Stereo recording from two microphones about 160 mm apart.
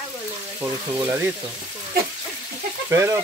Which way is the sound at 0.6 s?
15° right (ahead or behind).